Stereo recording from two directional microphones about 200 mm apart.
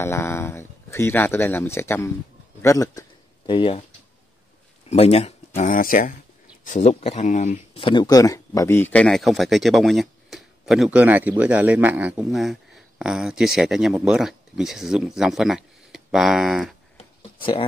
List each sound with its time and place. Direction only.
0.0 s speech: 15° left (ahead or behind)
4.8 s speech: 30° left (ahead or behind)
5.6 s speech: 45° left (ahead or behind); by 16.7 s centre (ahead or behind)
16.9 s a sound: 25° left (ahead or behind)